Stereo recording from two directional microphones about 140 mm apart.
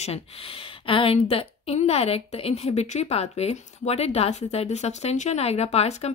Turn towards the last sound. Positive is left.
turn(degrees=50)  # may be behind; listen again after turning